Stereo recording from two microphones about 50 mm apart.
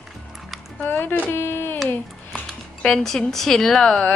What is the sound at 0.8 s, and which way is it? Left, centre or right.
Speech, left.